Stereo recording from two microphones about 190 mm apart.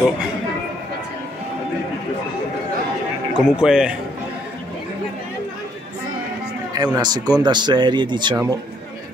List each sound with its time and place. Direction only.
3.3 s speech: 5° right (ahead or behind)
6.7 s speech: 20° right (ahead or behind)